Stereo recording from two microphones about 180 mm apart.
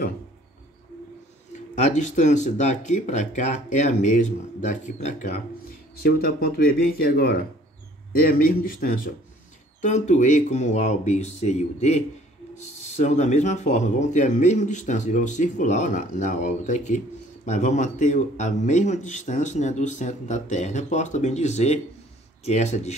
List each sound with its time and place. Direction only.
1.8 s speech: 40° left (ahead or behind)
6.0 s a man's voice: 55° left (ahead or behind); by 22.9 s 40° left (ahead or behind)